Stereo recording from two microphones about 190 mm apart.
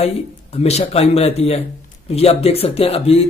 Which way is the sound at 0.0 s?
35° left (ahead or behind).